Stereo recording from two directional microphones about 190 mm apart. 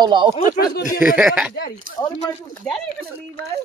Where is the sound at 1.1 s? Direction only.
5° right (ahead or behind).